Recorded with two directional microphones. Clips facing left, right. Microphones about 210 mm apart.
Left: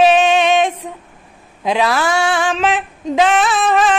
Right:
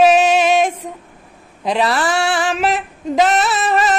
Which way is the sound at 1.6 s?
Centre (ahead or behind).